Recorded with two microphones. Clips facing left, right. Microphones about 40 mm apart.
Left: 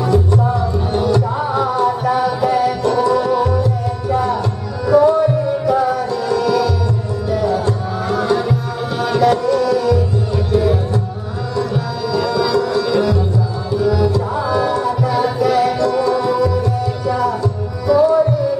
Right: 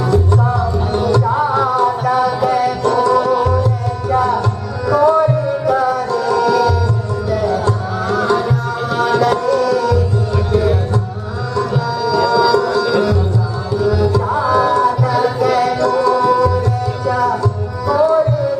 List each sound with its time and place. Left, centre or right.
0.9 s music: right
2.0 s music: left
2.4 s music: right
4.8 s music: right
7.6 s music: right
9.2 s tabla: right
10.5 s music: right
12.1 s music: right
14.5 s music: right
15.0 s music: centre
15.3 s music: right